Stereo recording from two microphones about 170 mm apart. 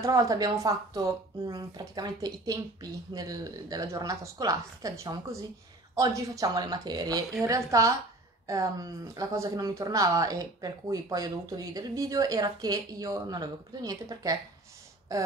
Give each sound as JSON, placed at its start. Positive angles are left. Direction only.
{"t": 0.0, "sound": "speech", "side_deg": -20}